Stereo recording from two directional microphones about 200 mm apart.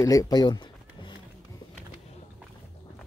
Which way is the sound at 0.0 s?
15° left (ahead or behind).